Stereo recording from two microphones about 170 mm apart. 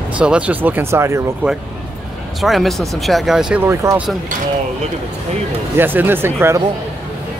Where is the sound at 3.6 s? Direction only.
15° right (ahead or behind).